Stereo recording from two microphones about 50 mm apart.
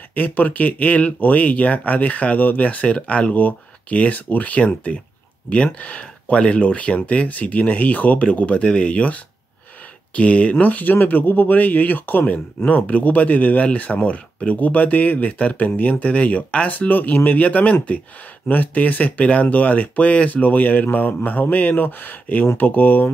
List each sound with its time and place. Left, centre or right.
0.1 s speech: left